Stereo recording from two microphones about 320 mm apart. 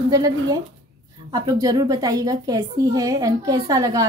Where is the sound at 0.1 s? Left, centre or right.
Centre.